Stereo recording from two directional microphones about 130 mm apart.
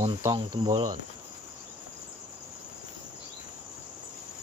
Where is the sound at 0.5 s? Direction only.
40° right (ahead or behind).